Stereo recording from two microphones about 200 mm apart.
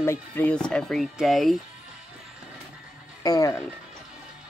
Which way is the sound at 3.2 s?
15° left (ahead or behind).